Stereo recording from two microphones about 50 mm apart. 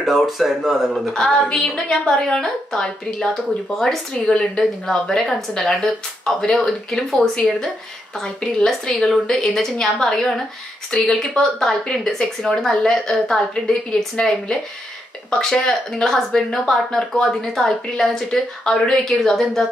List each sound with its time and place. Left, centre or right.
0.0 s speech: centre
1.1 s speech: centre
4.3 s speech: left
4.8 s speech: centre